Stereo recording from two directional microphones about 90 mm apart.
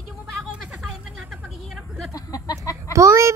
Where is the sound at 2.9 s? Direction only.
35° right (ahead or behind).